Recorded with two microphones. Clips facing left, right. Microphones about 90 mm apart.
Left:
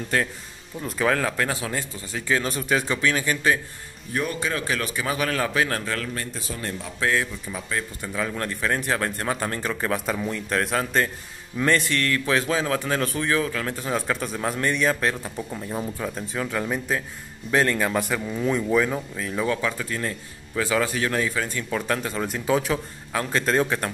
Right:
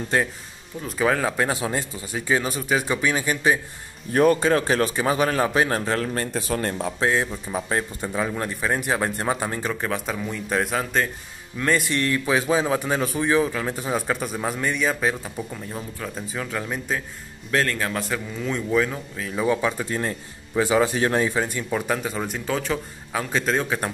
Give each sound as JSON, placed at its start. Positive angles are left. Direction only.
{"t": 0.8, "sound": "a man's voice", "side_deg": -5}
{"t": 2.5, "sound": "speech", "side_deg": 0}
{"t": 2.9, "sound": "a man's voice", "side_deg": -15}
{"t": 4.1, "sound": "a man's voice", "side_deg": -45}
{"t": 6.3, "sound": "speech", "side_deg": -55}
{"t": 7.0, "sound": "speech", "side_deg": -25}
{"t": 8.3, "sound": "a man's voice", "side_deg": -15}
{"t": 9.7, "sound": "speech", "side_deg": 0}
{"t": 11.7, "sound": "a man's voice", "side_deg": -15}
{"t": 15.5, "sound": "a man's voice", "side_deg": 10}
{"t": 19.4, "sound": "speech", "side_deg": -20}
{"t": 21.5, "sound": "a man's voice", "side_deg": -15}
{"t": 22.5, "sound": "speech", "side_deg": 5}